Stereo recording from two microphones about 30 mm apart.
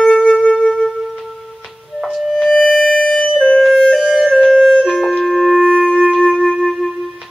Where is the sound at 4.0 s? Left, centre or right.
Centre.